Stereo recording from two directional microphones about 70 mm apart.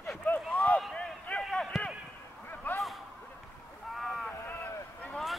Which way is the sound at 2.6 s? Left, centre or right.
Left.